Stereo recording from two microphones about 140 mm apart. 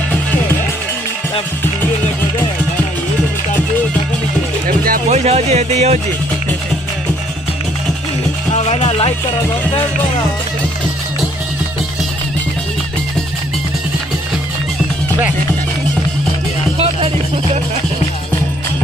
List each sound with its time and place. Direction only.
4.6 s music: 90° right
5.1 s music: 50° right (ahead or behind)
8.5 s speech: 50° left (ahead or behind)
16.7 s music: 45° right (ahead or behind)